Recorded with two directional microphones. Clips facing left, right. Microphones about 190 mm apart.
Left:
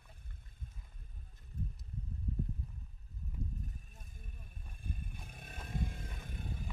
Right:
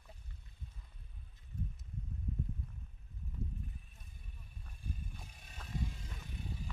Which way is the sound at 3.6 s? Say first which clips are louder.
Left 1 dB; 45° left (ahead or behind).